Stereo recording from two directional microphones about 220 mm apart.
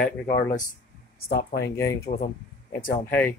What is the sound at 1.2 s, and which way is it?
Speech, 45° left (ahead or behind).